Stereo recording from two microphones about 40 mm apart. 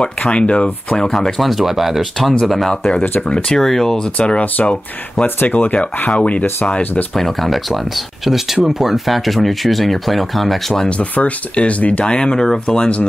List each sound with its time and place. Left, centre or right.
0.3 s speech: left
0.8 s speech: centre
1.4 s speech: centre
2.4 s speech: centre
3.2 s speech: left
3.5 s speech: centre
4.2 s speech: left
5.2 s speech: left
6.0 s speech: left
7.2 s speech: centre
10.9 s speech: left
12.0 s speech: left